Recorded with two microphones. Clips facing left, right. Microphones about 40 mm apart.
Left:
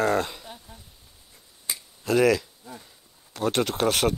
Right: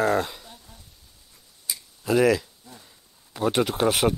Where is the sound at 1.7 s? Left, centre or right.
Left.